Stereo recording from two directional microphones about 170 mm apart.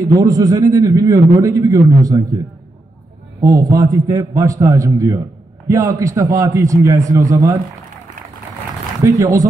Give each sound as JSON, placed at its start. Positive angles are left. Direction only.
{"t": 0.0, "sound": "a man's voice", "side_deg": -20}
{"t": 9.0, "sound": "a man's voice", "side_deg": -20}